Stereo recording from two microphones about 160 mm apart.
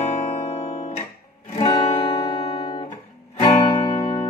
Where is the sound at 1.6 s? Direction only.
30° left (ahead or behind).